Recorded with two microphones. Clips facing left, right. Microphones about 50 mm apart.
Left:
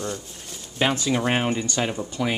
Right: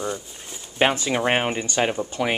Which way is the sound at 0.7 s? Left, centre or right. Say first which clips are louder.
Right 2 dB; right.